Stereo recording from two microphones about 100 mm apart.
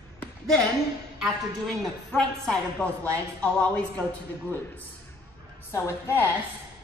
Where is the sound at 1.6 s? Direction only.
10° left (ahead or behind).